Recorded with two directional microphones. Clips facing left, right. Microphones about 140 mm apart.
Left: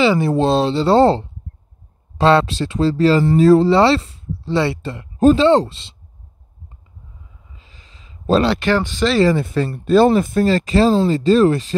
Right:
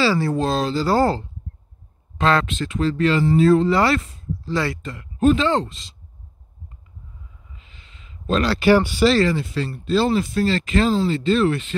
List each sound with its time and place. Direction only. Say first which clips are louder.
0.0 s speech: left 5 dB; 20° left (ahead or behind)
7.5 s a sound: left 2 dB; 35° left (ahead or behind)
8.5 s speech: right 2 dB; 10° right (ahead or behind)
9.3 s speech: left 6 dB; 55° left (ahead or behind); by 11.7 s 35° left (ahead or behind)